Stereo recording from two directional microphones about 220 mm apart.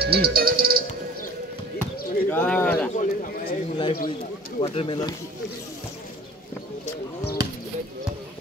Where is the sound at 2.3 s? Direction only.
10° left (ahead or behind).